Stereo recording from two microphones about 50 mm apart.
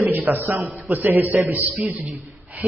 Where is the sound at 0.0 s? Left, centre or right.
Right.